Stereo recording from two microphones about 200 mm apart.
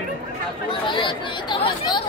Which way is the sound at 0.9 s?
25° left (ahead or behind).